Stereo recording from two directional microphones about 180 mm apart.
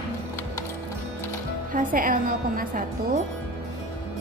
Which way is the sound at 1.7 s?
50° right (ahead or behind).